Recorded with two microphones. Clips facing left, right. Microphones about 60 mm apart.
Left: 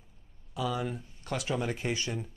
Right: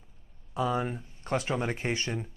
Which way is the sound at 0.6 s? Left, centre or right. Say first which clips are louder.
Right 3 dB; right.